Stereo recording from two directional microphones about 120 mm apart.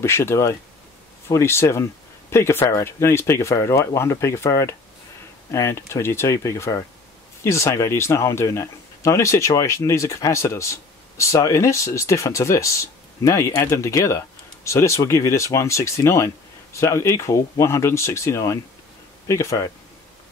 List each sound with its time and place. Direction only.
0.0 s speech: 20° left (ahead or behind)